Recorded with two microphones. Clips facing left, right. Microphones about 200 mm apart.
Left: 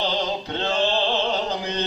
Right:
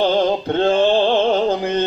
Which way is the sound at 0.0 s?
50° right (ahead or behind).